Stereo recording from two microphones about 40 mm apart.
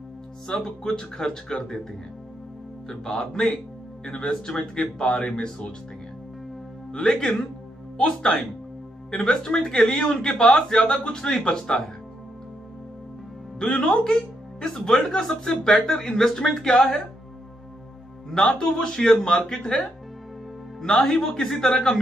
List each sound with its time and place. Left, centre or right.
0.5 s speech: centre
2.9 s speech: centre
6.9 s speech: left
13.6 s speech: left
18.6 s speech: centre
21.0 s speech: centre